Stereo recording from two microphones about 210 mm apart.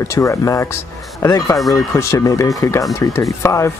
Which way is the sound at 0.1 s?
15° left (ahead or behind).